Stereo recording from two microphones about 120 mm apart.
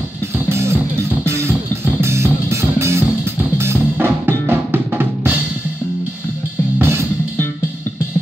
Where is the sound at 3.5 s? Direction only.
20° right (ahead or behind).